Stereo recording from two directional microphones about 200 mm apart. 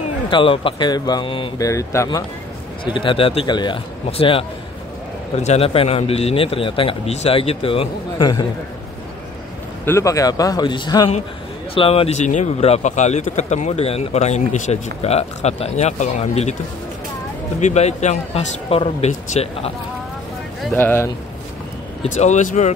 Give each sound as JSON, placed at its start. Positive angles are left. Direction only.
{"t": 0.3, "sound": "a man's voice", "side_deg": 25}
{"t": 1.7, "sound": "a man's voice", "side_deg": 15}
{"t": 9.8, "sound": "a man's voice", "side_deg": 15}
{"t": 17.6, "sound": "speech", "side_deg": 35}
{"t": 20.7, "sound": "speech", "side_deg": 10}
{"t": 22.0, "sound": "speech", "side_deg": 35}